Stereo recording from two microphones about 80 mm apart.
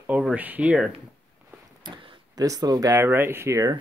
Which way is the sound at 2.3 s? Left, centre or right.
Right.